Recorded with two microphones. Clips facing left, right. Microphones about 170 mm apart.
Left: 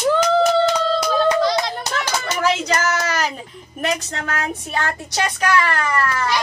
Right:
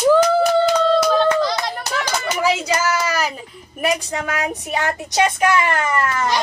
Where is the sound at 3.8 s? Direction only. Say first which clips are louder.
Right 3 dB; 10° right (ahead or behind).